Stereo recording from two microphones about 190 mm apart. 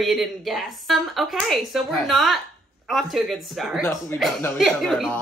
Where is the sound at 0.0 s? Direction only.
Centre (ahead or behind).